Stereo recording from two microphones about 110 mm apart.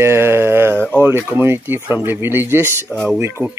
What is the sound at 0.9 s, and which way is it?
Speech, 20° right (ahead or behind).